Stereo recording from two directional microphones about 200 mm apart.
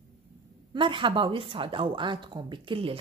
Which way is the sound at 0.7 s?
25° right (ahead or behind).